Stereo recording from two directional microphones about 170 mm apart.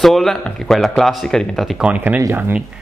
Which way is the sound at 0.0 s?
Centre (ahead or behind).